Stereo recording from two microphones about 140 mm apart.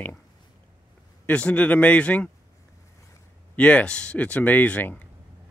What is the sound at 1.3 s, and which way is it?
Speech, 10° left (ahead or behind).